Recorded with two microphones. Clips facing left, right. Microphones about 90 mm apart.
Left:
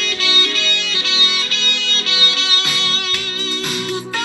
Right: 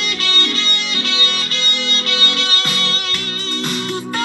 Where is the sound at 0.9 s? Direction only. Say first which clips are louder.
Right 1 dB; 45° right (ahead or behind).